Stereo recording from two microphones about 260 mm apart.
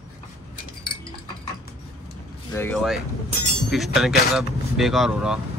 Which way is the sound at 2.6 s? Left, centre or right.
Centre.